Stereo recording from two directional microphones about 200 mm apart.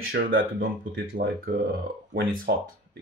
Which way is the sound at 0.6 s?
45° right (ahead or behind).